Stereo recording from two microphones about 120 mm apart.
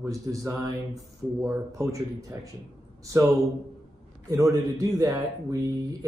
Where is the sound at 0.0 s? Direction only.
25° right (ahead or behind).